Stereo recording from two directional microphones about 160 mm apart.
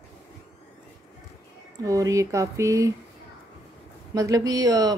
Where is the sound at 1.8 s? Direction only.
20° right (ahead or behind).